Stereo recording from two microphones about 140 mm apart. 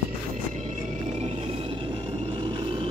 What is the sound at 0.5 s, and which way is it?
Vehicle, 55° right (ahead or behind).